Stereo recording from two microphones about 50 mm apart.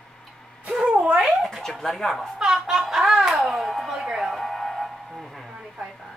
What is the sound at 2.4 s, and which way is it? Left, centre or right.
Speech, centre.